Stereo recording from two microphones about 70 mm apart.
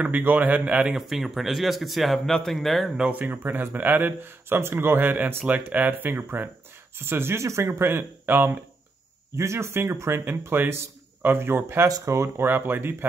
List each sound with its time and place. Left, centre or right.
0.0 s speech: right
0.9 s a man's voice: centre
3.0 s speech: right